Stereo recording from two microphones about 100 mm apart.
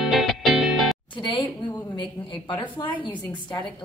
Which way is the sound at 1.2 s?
50° left (ahead or behind).